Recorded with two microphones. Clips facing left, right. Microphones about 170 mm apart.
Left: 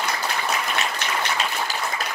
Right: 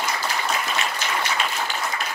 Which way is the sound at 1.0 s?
65° left (ahead or behind).